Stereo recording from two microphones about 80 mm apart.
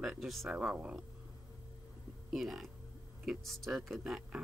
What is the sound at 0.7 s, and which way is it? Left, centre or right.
Speech, centre.